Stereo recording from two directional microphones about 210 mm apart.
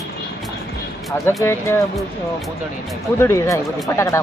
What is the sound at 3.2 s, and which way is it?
Speech, 15° left (ahead or behind).